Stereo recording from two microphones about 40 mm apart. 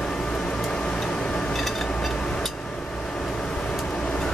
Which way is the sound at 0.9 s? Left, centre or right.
Centre.